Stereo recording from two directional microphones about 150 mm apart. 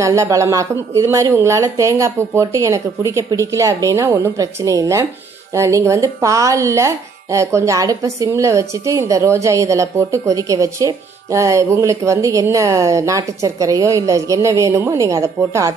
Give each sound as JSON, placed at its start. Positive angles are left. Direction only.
{"t": 0.0, "sound": "speech", "side_deg": -20}